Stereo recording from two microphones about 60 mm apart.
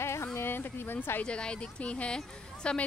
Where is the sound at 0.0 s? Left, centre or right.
Left.